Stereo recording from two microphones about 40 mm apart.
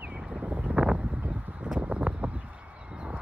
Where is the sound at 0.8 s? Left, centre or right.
Right.